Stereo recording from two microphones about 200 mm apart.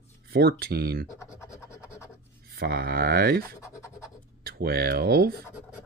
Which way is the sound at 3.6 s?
15° left (ahead or behind).